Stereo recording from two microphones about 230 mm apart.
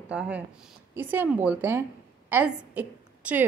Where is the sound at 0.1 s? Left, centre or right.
Centre.